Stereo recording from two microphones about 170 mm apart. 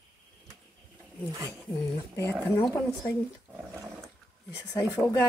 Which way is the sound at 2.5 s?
10° left (ahead or behind).